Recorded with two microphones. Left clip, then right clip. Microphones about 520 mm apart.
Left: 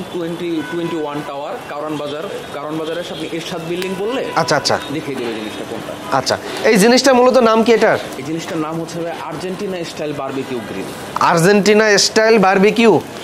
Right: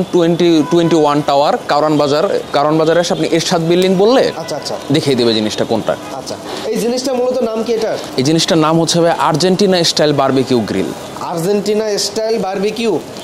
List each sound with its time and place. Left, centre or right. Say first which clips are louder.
0.2 s speech: right 10 dB; right
4.4 s speech: left 6 dB; left
6.8 s speech: left 5 dB; left
8.3 s speech: right 12 dB; right
11.2 s speech: left 4 dB; left